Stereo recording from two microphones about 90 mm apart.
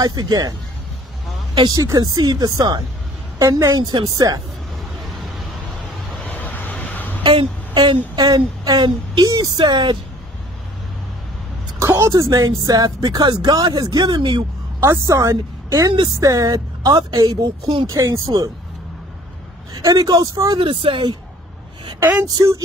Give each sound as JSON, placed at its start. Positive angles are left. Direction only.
{"t": 0.0, "sound": "speech", "side_deg": -50}
{"t": 1.7, "sound": "speech", "side_deg": -40}
{"t": 3.3, "sound": "a woman's voice", "side_deg": -35}
{"t": 6.2, "sound": "vehicle", "side_deg": 20}
{"t": 7.2, "sound": "speech", "side_deg": -60}
{"t": 12.0, "sound": "speech", "side_deg": -40}
{"t": 14.8, "sound": "a woman's voice", "side_deg": -35}
{"t": 17.8, "sound": "a woman's voice", "side_deg": -35}
{"t": 19.8, "sound": "a woman's voice", "side_deg": -40}
{"t": 20.5, "sound": "speech", "side_deg": -70}
{"t": 22.2, "sound": "a woman's voice", "side_deg": -35}